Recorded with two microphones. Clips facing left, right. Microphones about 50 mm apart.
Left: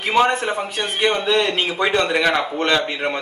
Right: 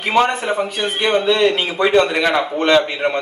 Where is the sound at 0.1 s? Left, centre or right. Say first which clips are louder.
Right 1 dB; centre.